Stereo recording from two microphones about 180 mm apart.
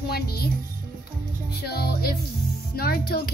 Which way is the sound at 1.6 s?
60° left (ahead or behind).